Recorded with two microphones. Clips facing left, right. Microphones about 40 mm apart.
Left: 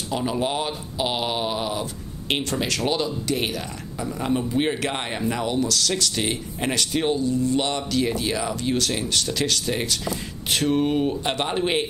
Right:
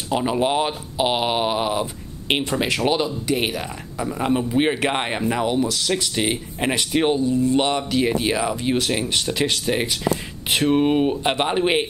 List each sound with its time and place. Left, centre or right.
0.1 s speech: right